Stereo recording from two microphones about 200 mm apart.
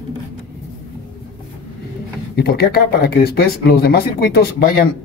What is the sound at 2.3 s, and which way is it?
A man's voice, 50° left (ahead or behind).